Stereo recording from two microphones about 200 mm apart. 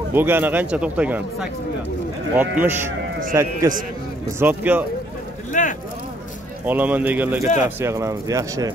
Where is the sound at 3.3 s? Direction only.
15° right (ahead or behind).